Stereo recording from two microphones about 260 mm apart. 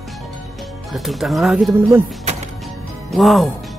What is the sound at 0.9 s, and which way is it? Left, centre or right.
Speech, centre.